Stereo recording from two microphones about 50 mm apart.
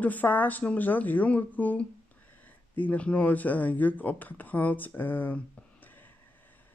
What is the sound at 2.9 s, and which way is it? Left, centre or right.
Speech, left.